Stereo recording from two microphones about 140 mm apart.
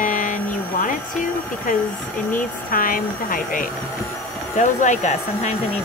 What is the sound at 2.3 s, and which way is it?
Speech, 85° left.